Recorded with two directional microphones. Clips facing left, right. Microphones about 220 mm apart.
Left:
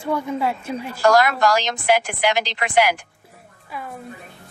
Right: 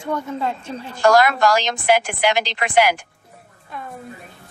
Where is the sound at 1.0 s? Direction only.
25° right (ahead or behind).